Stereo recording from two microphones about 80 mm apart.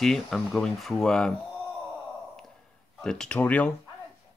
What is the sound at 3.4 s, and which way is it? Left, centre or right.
Speech, centre.